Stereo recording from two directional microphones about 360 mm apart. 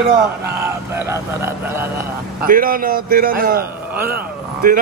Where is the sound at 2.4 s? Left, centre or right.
Right.